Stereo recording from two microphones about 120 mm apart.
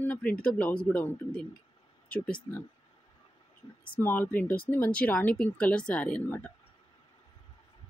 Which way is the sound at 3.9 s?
15° left (ahead or behind).